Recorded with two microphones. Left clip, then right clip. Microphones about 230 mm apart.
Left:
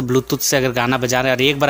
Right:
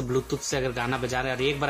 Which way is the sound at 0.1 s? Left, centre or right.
Left.